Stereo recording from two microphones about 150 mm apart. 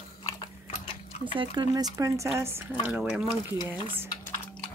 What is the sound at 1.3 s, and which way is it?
Speech, 30° right (ahead or behind).